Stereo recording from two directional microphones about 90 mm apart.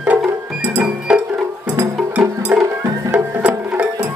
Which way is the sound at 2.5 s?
15° right (ahead or behind).